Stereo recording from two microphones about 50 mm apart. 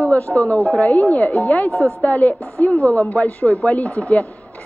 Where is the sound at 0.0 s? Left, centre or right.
Left.